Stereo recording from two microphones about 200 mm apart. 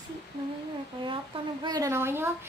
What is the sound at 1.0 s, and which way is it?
A woman's voice, 25° right (ahead or behind).